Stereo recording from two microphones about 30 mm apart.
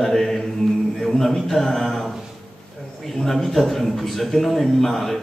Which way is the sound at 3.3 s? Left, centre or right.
Centre.